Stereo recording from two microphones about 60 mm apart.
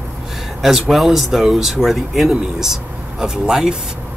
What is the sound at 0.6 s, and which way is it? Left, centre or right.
Speech, centre.